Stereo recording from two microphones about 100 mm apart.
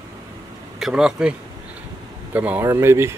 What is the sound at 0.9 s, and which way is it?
Speech, 10° right (ahead or behind).